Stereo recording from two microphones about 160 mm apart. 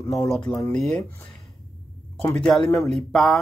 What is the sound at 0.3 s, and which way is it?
Speech, 5° left (ahead or behind).